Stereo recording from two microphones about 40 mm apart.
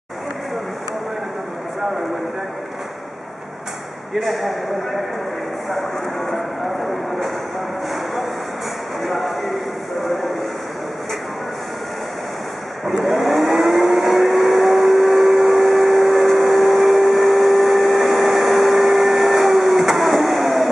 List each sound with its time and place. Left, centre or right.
4.1 s speech: centre
6.3 s speech: centre
9.0 s a sound: centre
10.0 s vehicle: centre
13.0 s vehicle: centre